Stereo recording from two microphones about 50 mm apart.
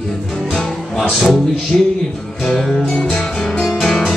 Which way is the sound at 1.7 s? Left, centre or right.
Centre.